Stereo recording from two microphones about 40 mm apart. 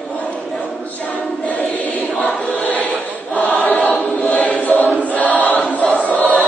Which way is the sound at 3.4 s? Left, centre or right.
Left.